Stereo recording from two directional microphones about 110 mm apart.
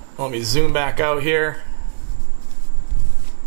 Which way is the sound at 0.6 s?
10° right (ahead or behind).